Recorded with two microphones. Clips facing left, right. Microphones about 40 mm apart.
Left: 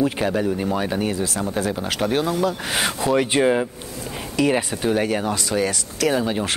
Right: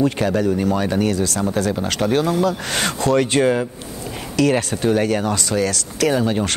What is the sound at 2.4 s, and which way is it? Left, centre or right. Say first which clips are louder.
Speech: right 2 dB; centre.